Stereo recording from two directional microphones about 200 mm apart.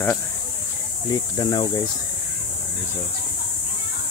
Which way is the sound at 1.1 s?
20° left (ahead or behind).